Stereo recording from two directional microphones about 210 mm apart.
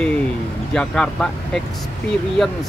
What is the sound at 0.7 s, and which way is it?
Speech, 5° left (ahead or behind).